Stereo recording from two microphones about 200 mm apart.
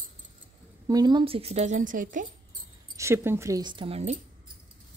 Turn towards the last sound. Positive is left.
turn(degrees=-30)  # may be behind; listen again after turning